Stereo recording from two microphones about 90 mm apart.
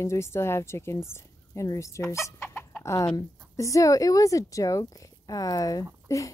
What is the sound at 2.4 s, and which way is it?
Chicken, 25° left (ahead or behind).